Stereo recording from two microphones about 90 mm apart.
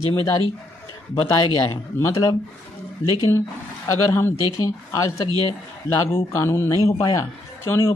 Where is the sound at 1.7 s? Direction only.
35° left (ahead or behind).